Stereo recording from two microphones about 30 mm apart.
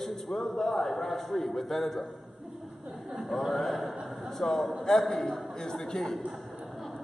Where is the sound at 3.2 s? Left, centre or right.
Centre.